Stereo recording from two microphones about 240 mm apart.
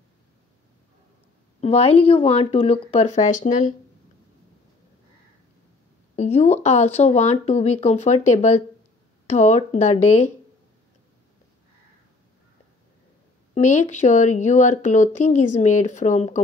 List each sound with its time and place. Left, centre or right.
1.6 s speech: left
6.1 s speech: left
13.6 s speech: left